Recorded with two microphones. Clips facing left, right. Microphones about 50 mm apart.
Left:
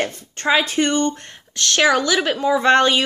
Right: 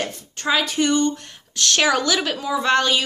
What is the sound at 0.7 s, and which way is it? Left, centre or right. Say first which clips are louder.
Speech: left 1 dB; left.